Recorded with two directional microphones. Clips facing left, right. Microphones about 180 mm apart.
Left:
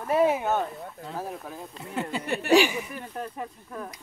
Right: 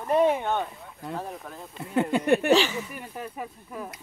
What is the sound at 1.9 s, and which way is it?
Speech, 55° right (ahead or behind).